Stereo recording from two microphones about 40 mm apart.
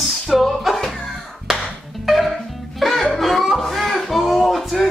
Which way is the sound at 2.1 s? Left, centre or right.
Centre.